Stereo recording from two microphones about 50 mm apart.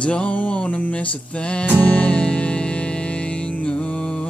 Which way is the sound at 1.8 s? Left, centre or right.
Left.